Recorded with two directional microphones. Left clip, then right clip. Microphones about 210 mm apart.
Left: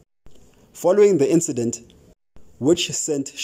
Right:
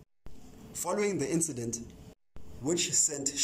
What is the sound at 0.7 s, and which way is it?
A man's voice, 45° left (ahead or behind).